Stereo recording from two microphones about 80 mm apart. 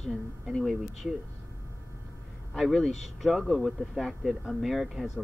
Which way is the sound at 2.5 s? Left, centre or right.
Centre.